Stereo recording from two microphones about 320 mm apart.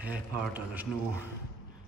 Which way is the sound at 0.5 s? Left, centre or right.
Centre.